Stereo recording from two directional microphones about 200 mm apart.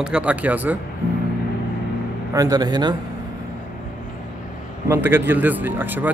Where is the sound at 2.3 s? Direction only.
20° right (ahead or behind).